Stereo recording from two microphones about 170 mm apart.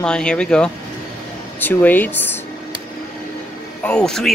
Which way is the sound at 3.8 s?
5° left (ahead or behind).